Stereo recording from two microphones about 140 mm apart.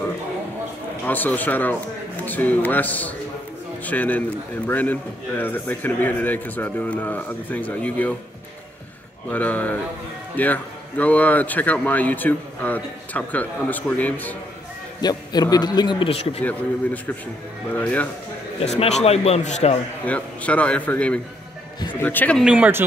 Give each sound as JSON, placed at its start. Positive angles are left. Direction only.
{"t": 1.0, "sound": "a man's voice", "side_deg": 10}
{"t": 9.3, "sound": "a man's voice", "side_deg": 10}
{"t": 15.0, "sound": "a man's voice", "side_deg": 30}
{"t": 16.4, "sound": "a man's voice", "side_deg": 10}
{"t": 18.6, "sound": "a man's voice", "side_deg": 50}
{"t": 20.1, "sound": "a man's voice", "side_deg": 10}
{"t": 22.4, "sound": "speech", "side_deg": -10}